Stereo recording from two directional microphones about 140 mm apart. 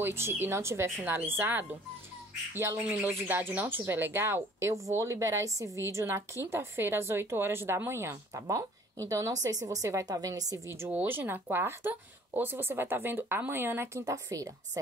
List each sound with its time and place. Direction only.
0.0 s speech: 15° right (ahead or behind)
2.5 s music: 20° right (ahead or behind)
3.1 s speech: 15° right (ahead or behind)